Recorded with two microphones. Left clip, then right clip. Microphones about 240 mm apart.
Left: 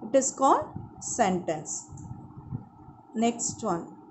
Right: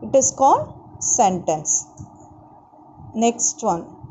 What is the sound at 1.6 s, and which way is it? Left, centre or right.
Speech, centre.